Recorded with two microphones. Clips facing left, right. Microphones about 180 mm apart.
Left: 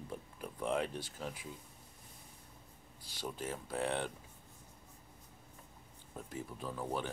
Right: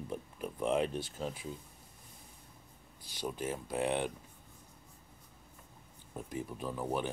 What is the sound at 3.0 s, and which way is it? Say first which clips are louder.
Speech: right 4 dB; 20° right (ahead or behind).